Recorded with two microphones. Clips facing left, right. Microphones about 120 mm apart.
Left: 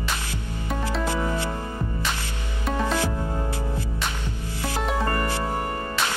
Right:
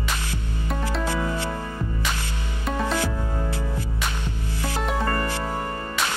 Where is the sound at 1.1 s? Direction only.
15° left (ahead or behind).